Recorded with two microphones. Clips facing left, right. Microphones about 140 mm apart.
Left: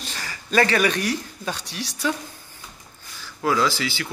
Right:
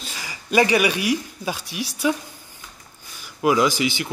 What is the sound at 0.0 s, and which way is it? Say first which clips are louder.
Speech: left 1 dB; 10° right (ahead or behind).